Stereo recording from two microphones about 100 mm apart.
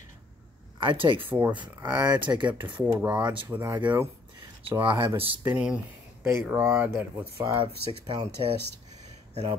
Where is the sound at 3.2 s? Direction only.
45° right (ahead or behind).